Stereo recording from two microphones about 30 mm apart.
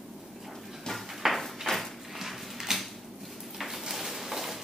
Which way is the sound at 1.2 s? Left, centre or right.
Centre.